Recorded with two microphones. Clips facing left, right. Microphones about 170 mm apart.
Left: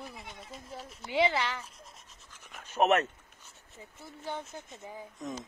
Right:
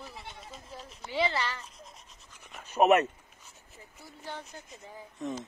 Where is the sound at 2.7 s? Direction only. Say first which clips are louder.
Right 3 dB; 10° right (ahead or behind).